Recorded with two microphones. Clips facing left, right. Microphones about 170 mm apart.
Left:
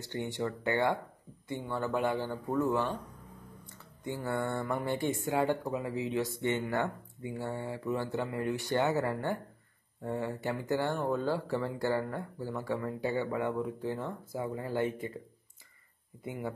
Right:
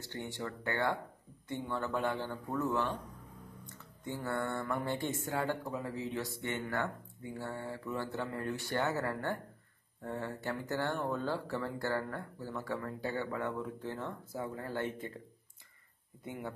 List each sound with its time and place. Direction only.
0.0 s speech: 15° left (ahead or behind)
3.6 s speech: 10° left (ahead or behind)
16.3 s speech: 5° left (ahead or behind)